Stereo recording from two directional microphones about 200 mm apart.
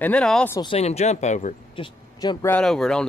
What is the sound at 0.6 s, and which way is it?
Speech, 30° left (ahead or behind).